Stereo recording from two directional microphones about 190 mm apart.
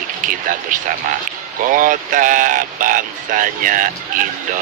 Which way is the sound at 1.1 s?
45° right (ahead or behind).